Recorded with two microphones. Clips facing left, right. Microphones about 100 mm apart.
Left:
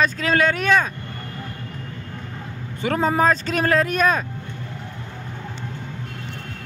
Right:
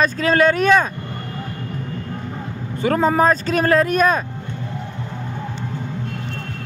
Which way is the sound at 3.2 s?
15° right (ahead or behind).